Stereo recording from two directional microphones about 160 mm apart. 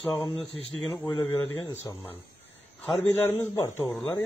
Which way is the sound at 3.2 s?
15° left (ahead or behind).